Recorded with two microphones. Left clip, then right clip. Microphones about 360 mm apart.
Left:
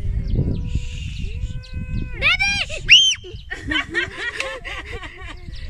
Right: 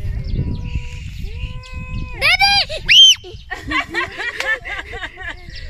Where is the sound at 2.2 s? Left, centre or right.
Centre.